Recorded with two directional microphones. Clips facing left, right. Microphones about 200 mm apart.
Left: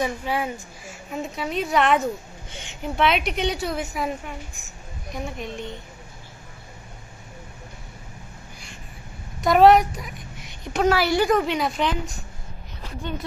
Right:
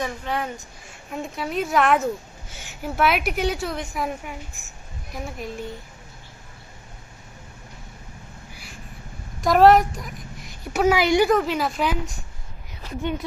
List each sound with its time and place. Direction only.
0.0 s a woman's voice: 10° left (ahead or behind)
9.4 s a woman's voice: centre (ahead or behind); by 11.2 s 15° right (ahead or behind)
11.2 s a woman's voice: centre (ahead or behind)